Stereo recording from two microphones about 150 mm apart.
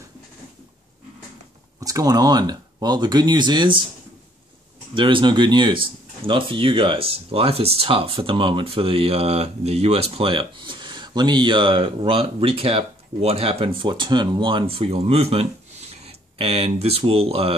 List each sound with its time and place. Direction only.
1.8 s speech: 25° right (ahead or behind)
4.9 s speech: 35° right (ahead or behind)